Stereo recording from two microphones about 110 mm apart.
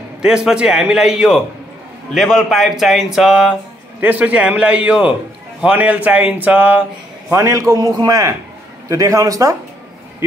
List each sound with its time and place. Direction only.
0.2 s speech: 5° right (ahead or behind)
7.2 s a man's voice: 30° right (ahead or behind)